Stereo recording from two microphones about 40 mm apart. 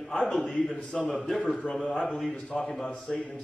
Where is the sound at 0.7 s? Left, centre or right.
Left.